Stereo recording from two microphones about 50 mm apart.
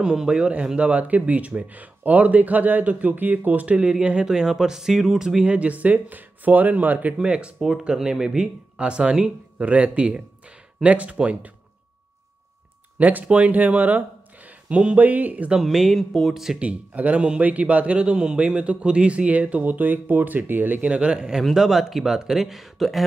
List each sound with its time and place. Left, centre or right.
0.0 s speech: centre
5.5 s speech: right
7.2 s speech: right
13.0 s speech: right
14.7 s speech: right
15.0 s speech: right
15.6 s speech: centre
16.5 s speech: right
17.9 s speech: centre; by 20.8 s right
20.8 s speech: right
21.2 s speech: centre